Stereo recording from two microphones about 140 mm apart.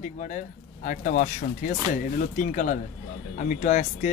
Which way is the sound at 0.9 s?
70° left (ahead or behind).